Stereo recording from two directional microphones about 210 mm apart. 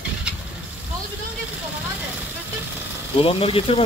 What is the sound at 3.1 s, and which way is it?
Speech, 25° left (ahead or behind).